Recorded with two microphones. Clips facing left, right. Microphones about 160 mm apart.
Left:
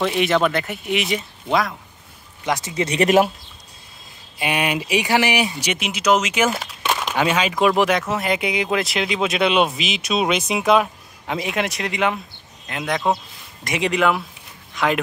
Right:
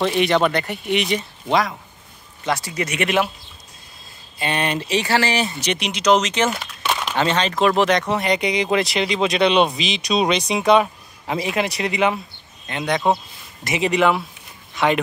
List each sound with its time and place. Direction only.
0.0 s speech: centre (ahead or behind)
2.4 s speech: 20° left (ahead or behind); by 3.3 s 40° left (ahead or behind)
4.4 s speech: 10° left (ahead or behind)